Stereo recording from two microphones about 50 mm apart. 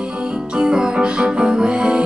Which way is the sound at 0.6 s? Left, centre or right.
Centre.